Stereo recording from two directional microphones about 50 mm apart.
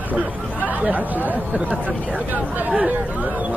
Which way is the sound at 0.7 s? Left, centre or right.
Right.